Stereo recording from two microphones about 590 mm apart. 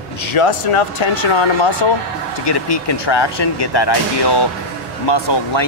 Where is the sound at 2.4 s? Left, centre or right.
Left.